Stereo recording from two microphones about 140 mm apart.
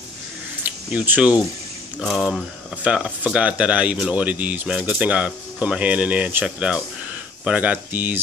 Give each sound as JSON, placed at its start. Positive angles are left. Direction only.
{"t": 0.7, "sound": "speech", "side_deg": -10}